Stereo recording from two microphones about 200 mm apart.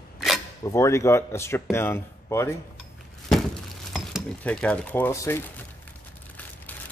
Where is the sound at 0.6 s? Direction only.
15° left (ahead or behind).